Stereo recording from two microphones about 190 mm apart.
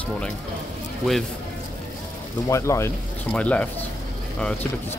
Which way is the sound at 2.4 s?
15° left (ahead or behind).